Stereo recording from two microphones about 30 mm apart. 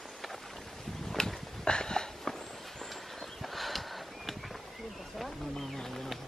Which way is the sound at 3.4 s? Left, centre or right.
Centre.